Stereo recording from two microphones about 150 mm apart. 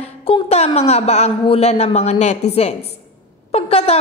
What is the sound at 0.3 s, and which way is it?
A man's voice, 45° left (ahead or behind).